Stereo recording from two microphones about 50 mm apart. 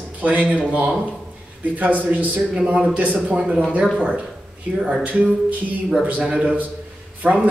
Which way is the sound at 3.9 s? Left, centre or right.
Centre.